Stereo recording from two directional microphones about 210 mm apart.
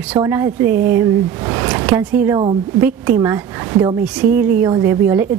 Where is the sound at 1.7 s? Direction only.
5° right (ahead or behind).